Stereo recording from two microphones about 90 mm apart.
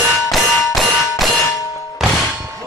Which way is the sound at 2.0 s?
5° right (ahead or behind).